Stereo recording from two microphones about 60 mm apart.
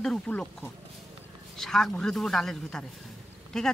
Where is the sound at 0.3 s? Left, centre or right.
Left.